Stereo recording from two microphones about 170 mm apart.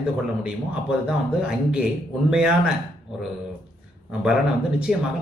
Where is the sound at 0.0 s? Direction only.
5° right (ahead or behind).